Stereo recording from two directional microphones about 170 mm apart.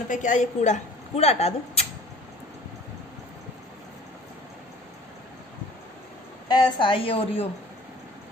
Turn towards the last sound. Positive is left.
turn(degrees=35)  # may be behind; listen again after turning